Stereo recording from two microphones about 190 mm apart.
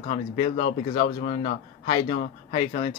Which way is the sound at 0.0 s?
35° left (ahead or behind).